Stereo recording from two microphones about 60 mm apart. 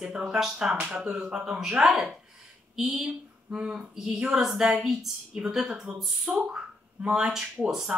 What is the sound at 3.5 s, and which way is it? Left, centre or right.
A woman's voice, centre.